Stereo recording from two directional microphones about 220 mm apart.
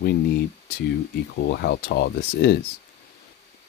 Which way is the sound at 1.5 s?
50° left (ahead or behind).